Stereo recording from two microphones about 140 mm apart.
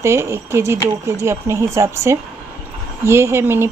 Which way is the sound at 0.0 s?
20° right (ahead or behind).